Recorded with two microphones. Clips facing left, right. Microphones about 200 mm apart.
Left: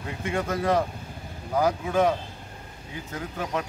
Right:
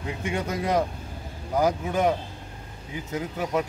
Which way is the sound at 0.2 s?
15° right (ahead or behind).